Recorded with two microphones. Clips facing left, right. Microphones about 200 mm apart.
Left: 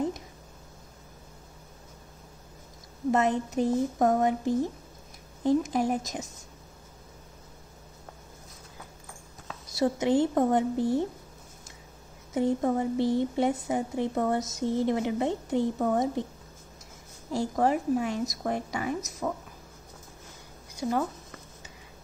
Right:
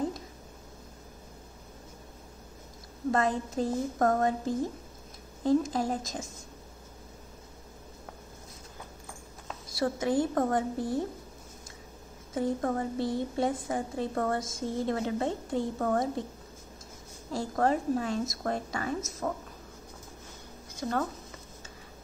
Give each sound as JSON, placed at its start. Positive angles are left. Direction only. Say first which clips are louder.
{"t": 3.1, "sound": "a woman's voice", "louder": "left 3 dB", "side_deg": 20}
{"t": 9.7, "sound": "a woman's voice", "louder": "left 4 dB", "side_deg": 20}
{"t": 12.4, "sound": "a woman's voice", "louder": "left 4 dB", "side_deg": 20}
{"t": 17.3, "sound": "a woman's voice", "louder": "left 2 dB", "side_deg": 15}
{"t": 20.7, "sound": "speech", "louder": "left 3 dB", "side_deg": 10}